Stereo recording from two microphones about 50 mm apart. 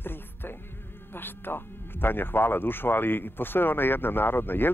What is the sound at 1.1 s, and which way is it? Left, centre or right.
Speech, left.